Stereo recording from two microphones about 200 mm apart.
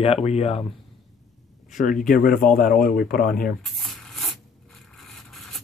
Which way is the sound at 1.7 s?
40° left (ahead or behind).